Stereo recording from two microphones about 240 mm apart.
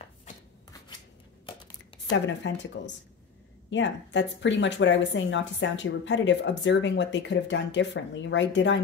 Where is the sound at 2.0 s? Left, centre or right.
Left.